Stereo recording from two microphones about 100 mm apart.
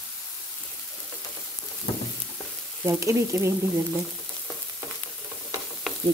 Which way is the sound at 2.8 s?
30° right (ahead or behind).